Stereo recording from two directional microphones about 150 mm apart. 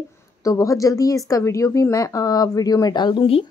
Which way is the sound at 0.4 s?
20° left (ahead or behind).